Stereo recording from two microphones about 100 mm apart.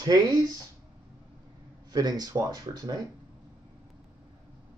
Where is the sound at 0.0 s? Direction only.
40° right (ahead or behind).